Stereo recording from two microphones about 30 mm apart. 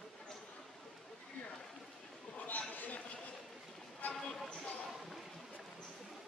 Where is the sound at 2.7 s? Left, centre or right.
Left.